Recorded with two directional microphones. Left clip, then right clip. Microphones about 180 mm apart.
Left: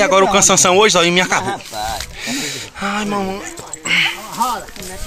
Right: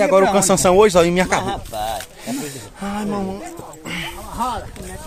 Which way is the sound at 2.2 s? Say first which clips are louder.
Left 6 dB; 15° right (ahead or behind).